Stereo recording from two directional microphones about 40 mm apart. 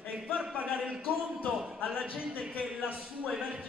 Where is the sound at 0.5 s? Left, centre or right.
Right.